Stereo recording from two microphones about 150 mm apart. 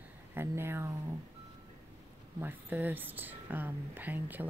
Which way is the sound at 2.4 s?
15° right (ahead or behind).